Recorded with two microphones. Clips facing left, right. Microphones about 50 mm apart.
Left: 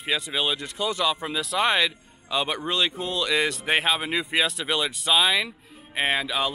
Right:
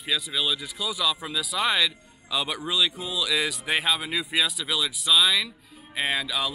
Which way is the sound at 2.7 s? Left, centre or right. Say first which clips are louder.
Right 2 dB; left.